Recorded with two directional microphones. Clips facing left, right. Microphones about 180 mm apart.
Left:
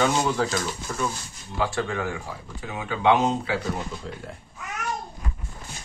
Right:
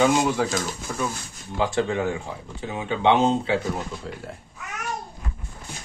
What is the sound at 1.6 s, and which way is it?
Speech, 20° right (ahead or behind).